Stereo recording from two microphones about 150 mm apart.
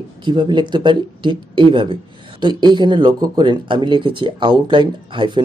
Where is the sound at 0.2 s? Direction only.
30° right (ahead or behind).